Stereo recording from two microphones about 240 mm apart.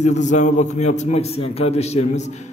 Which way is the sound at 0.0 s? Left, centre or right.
Left.